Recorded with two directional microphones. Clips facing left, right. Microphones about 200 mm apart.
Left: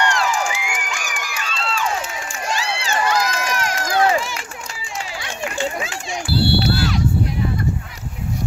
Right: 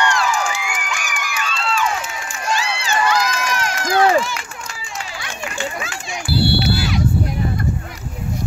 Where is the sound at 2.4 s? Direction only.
35° left (ahead or behind).